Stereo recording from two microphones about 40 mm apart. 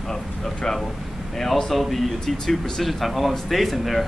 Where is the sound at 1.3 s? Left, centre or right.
Centre.